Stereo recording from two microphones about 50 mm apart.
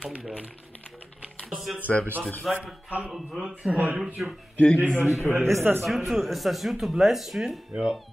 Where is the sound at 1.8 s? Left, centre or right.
Left.